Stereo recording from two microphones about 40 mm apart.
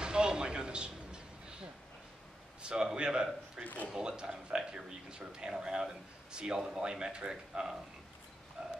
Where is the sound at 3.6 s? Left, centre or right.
Left.